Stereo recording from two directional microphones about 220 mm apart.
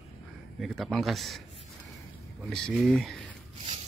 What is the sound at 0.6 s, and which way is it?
Speech, centre (ahead or behind).